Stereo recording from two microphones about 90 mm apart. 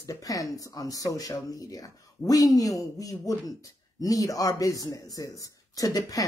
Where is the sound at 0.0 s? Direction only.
40° left (ahead or behind).